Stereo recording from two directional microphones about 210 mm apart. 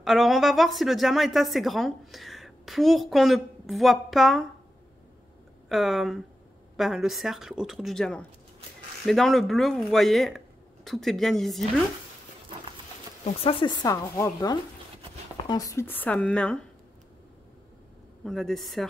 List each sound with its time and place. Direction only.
0.0 s speech: centre (ahead or behind)
5.7 s speech: centre (ahead or behind)
13.2 s speech: 25° left (ahead or behind)
13.8 s speech: 15° left (ahead or behind)
18.2 s speech: centre (ahead or behind)